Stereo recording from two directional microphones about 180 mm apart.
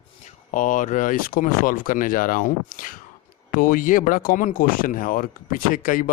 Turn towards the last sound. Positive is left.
turn(degrees=50)  # may be behind; listen again after turning